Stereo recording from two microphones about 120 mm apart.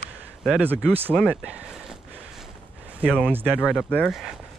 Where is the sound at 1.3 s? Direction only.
10° right (ahead or behind).